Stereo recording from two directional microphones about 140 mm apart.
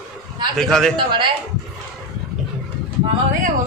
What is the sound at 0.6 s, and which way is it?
Speech, 5° left (ahead or behind).